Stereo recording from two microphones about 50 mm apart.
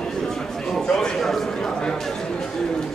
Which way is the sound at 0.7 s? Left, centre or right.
Centre.